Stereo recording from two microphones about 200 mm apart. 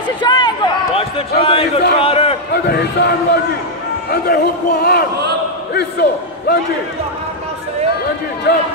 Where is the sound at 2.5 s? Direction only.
55° left (ahead or behind).